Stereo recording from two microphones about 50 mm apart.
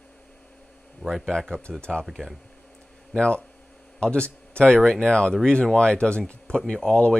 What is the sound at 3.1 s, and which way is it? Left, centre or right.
Speech, centre.